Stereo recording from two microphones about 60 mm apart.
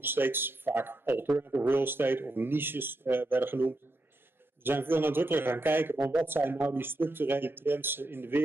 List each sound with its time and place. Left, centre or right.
0.0 s speech: right